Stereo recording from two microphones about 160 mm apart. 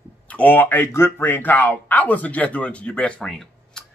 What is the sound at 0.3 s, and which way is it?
Speech, 10° left (ahead or behind).